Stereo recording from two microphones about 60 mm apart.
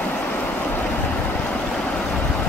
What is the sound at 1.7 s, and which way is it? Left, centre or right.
Stream, centre.